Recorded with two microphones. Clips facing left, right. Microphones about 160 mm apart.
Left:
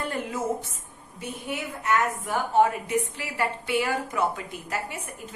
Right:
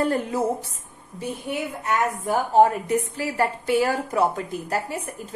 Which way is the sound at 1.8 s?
35° right (ahead or behind).